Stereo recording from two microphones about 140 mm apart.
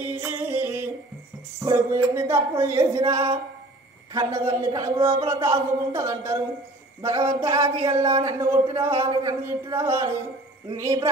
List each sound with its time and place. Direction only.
0.0 s music: 15° right (ahead or behind)
1.6 s speech: 20° right (ahead or behind)
4.1 s speech: 20° right (ahead or behind)